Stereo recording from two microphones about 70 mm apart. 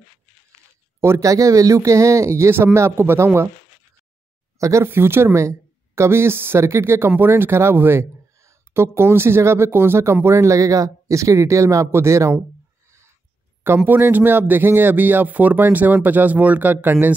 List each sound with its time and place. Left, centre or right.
1.0 s speech: right
4.6 s speech: right
4.8 s speech: right
13.8 s speech: right